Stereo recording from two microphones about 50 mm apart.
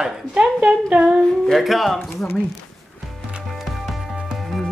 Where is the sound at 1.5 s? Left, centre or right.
Centre.